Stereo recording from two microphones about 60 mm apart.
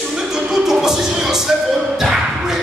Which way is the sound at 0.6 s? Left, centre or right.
Centre.